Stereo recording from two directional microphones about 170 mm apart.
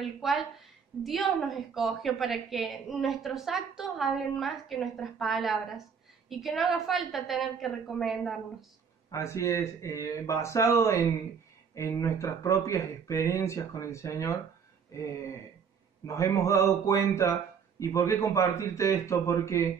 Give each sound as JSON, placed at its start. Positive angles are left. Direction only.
{"t": 0.0, "sound": "a woman's voice", "side_deg": 0}
{"t": 9.1, "sound": "speech", "side_deg": 15}
{"t": 14.9, "sound": "throat clearing", "side_deg": 20}
{"t": 16.1, "sound": "speech", "side_deg": 15}